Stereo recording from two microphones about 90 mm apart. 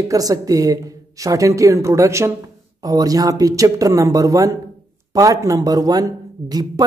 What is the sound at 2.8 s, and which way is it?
Speech, 45° right (ahead or behind).